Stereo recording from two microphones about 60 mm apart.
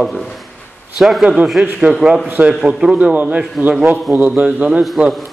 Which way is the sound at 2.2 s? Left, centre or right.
Right.